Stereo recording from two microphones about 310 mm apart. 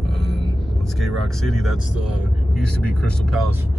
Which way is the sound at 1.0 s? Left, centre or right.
Centre.